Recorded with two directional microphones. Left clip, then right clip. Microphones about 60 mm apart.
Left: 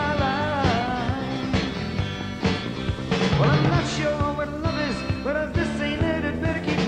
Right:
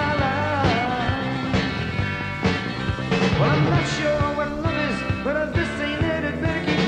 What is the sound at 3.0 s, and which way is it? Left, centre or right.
Music, left.